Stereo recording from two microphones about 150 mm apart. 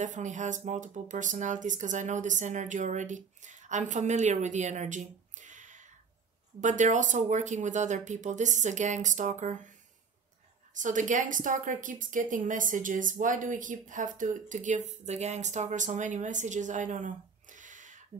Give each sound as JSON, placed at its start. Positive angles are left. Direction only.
{"t": 0.0, "sound": "a woman's voice", "side_deg": -55}
{"t": 10.8, "sound": "a woman's voice", "side_deg": -60}